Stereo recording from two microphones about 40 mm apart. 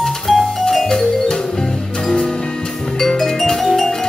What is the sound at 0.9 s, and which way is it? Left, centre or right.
Music, centre.